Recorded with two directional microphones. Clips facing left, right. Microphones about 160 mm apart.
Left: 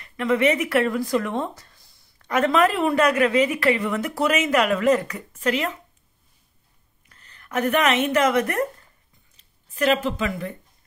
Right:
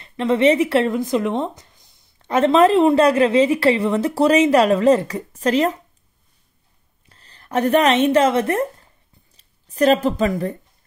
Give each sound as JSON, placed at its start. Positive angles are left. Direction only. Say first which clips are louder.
{"t": 0.0, "sound": "speech", "louder": "right 4 dB", "side_deg": -30}
{"t": 7.1, "sound": "a woman's voice", "louder": "right 5 dB", "side_deg": -30}